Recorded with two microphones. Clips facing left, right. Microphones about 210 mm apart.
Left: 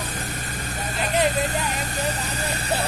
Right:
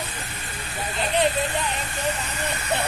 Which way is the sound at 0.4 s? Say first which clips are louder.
Left 2 dB; 40° left (ahead or behind).